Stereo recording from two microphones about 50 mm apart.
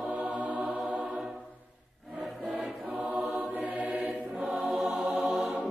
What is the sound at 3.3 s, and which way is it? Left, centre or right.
Music, right.